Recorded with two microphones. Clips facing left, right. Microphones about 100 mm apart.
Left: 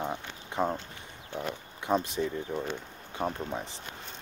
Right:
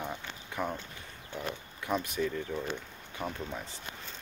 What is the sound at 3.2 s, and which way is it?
Speech, 30° left (ahead or behind).